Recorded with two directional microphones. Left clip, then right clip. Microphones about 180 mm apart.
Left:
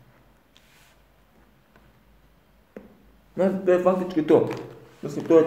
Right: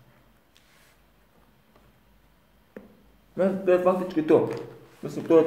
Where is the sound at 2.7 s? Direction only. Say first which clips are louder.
Left 2 dB; 5° right (ahead or behind).